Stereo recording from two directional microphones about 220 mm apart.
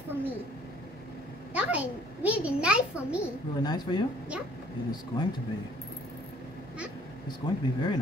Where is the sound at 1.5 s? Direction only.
5° right (ahead or behind).